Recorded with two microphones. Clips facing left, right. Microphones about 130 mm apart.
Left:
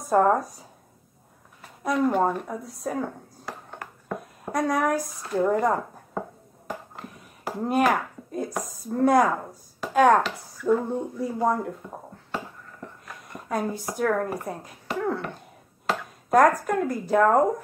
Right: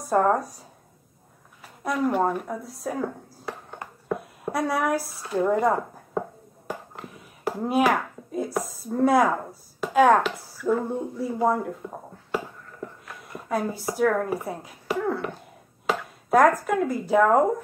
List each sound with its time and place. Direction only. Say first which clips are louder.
0.0 s speech: left 1 dB; centre (ahead or behind)
1.9 s speech: left 1 dB; 5° right (ahead or behind)
4.5 s speech: left 1 dB; 5° right (ahead or behind)
7.0 s a sound: right 1 dB; centre (ahead or behind)
9.8 s chopping: right 1 dB; 5° right (ahead or behind)
13.0 s speech: right 1 dB; centre (ahead or behind)